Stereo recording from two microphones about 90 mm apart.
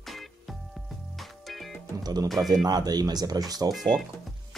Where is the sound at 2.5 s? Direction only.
45° right (ahead or behind).